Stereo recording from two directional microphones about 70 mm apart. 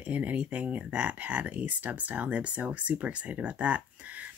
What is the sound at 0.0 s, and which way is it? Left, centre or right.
Speech, right.